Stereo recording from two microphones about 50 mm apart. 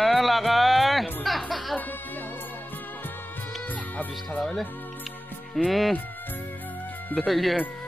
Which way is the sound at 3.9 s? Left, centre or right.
Left.